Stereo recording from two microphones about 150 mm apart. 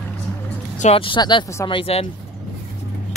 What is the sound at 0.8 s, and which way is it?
A woman's voice, 40° left (ahead or behind).